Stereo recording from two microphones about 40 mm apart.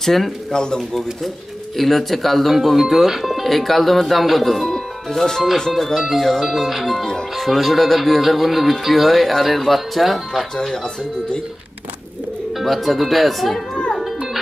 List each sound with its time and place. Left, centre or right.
0.0 s speech: centre
0.5 s speech: centre
0.7 s speech: centre
4.7 s music: centre
5.7 s speech: centre
12.5 s speech: centre